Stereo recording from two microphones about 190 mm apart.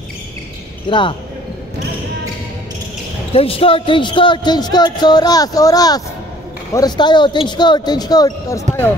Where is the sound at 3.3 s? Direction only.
30° left (ahead or behind).